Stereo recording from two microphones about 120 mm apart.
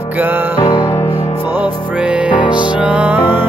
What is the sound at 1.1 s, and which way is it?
Music, 15° right (ahead or behind).